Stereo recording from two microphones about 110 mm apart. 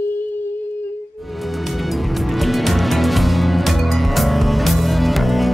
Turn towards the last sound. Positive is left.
turn(degrees=0)  # may be behind; listen again after turning